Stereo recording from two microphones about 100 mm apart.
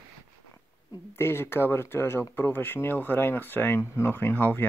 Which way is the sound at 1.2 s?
25° left (ahead or behind).